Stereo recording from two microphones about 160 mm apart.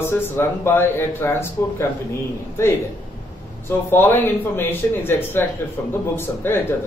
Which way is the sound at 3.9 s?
15° left (ahead or behind).